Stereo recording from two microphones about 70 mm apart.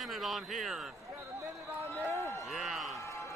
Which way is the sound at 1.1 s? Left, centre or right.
Right.